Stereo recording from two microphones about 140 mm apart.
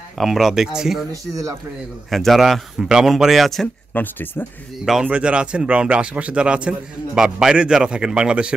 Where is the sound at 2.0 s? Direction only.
Centre (ahead or behind).